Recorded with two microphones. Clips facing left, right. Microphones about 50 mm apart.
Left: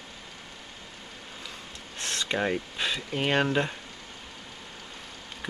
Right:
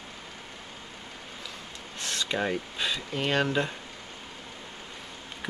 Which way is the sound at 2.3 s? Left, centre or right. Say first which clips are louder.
Left 2 dB; centre.